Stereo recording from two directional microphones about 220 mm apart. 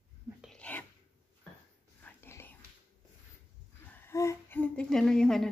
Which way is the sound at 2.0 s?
10° left (ahead or behind).